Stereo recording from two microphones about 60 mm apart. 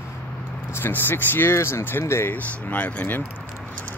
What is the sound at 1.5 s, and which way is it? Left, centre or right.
Speech, left.